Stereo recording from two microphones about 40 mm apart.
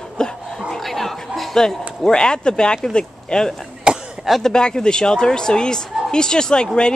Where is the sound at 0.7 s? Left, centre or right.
Centre.